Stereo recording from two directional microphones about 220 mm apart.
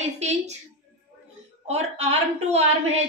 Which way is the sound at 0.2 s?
30° right (ahead or behind).